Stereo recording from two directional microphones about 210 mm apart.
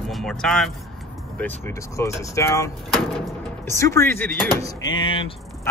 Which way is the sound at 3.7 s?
15° left (ahead or behind).